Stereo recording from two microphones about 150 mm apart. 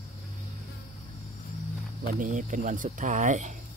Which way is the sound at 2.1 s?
60° right (ahead or behind).